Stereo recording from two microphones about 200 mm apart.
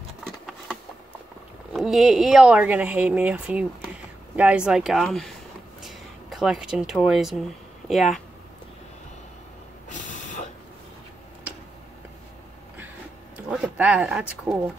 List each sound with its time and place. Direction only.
0.2 s a sound: centre (ahead or behind)
1.7 s speech: centre (ahead or behind)
9.8 s vehicle: 40° left (ahead or behind)
13.5 s speech: 5° right (ahead or behind)